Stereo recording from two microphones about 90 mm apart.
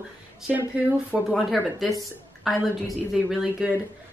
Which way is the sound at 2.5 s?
Centre (ahead or behind).